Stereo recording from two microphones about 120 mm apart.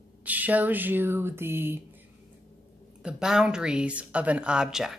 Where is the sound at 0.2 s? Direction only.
15° right (ahead or behind).